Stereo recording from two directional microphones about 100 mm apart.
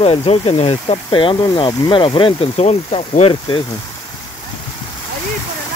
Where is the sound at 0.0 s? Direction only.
75° left (ahead or behind); by 0.9 s 90° left.